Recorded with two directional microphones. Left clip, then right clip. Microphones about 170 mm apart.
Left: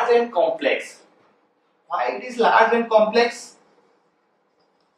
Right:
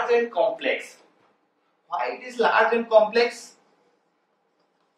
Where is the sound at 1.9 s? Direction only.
15° right (ahead or behind).